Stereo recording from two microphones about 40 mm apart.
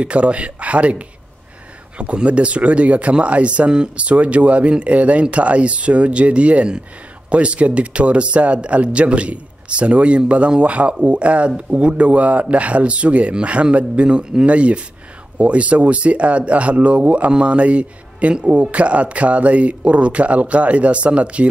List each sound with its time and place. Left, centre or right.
0.0 s speech: right